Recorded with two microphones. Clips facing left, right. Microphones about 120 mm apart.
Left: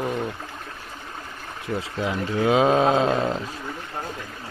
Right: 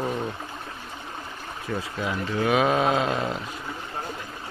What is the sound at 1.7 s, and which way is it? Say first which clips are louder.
Speech: left 3 dB; 20° left (ahead or behind).